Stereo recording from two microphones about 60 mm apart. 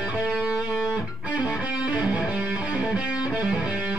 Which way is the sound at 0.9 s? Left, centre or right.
Right.